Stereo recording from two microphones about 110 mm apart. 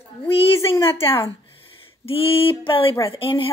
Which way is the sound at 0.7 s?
20° left (ahead or behind).